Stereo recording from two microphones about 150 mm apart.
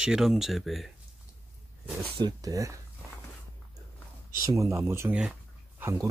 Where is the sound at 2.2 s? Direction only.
25° right (ahead or behind).